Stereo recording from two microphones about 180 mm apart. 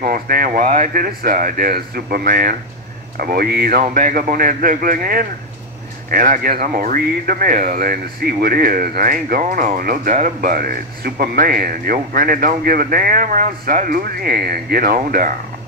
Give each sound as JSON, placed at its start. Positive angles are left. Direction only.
{"t": 0.0, "sound": "speech", "side_deg": -50}